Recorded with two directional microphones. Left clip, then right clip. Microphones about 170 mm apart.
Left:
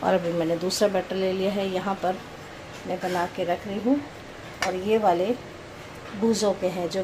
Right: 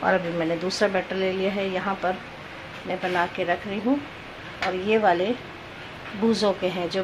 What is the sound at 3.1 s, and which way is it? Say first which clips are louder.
Speech: right 2 dB; 5° left (ahead or behind).